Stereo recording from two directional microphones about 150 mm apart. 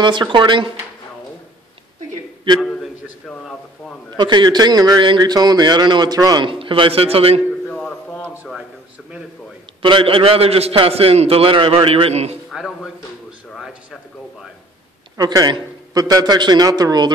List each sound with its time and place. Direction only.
0.0 s a man's voice: 30° right (ahead or behind)
2.6 s a man's voice: 5° left (ahead or behind)
4.2 s a man's voice: 30° right (ahead or behind)
7.6 s a sound: 10° left (ahead or behind)
9.8 s a man's voice: 35° right (ahead or behind)
12.4 s a sound: centre (ahead or behind)
15.1 s a man's voice: 25° right (ahead or behind)